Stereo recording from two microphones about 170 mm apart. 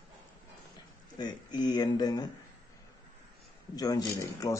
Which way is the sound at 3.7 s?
20° left (ahead or behind).